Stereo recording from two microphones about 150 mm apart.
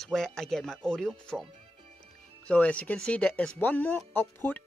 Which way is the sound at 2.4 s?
10° left (ahead or behind).